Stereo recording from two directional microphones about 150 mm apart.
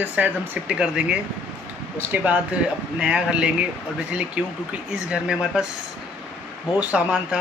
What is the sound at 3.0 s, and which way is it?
Speech, 5° right (ahead or behind).